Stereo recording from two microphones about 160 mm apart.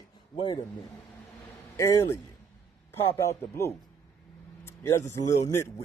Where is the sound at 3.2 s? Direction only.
20° left (ahead or behind).